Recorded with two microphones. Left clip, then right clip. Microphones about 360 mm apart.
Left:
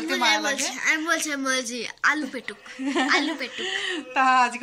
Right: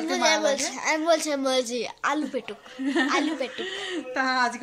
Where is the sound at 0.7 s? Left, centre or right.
Centre.